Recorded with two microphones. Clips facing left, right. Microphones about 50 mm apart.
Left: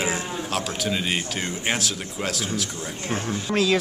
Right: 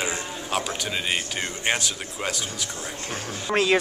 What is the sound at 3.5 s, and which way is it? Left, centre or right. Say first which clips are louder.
Speech: right 1 dB; right.